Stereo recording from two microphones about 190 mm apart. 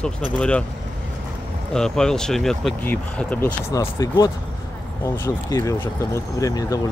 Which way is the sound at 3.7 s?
20° left (ahead or behind).